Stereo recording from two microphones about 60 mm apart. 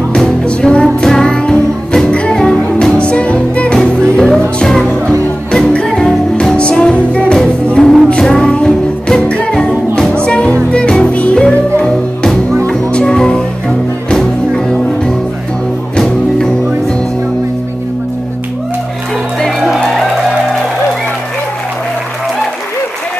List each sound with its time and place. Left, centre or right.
0.1 s music: centre
5.9 s music: centre
19.8 s music: centre